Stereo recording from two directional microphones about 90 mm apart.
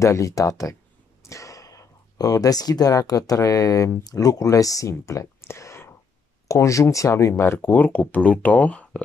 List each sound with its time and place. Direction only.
0.0 s speech: 35° left (ahead or behind); by 9.0 s 15° left (ahead or behind)